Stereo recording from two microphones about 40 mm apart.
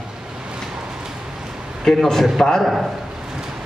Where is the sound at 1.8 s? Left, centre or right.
Centre.